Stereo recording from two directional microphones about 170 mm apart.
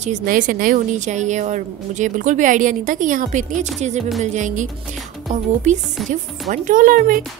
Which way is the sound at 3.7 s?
40° right (ahead or behind).